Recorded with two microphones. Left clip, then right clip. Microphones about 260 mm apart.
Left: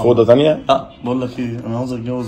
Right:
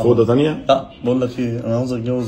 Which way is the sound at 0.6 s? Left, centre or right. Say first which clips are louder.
Even; centre.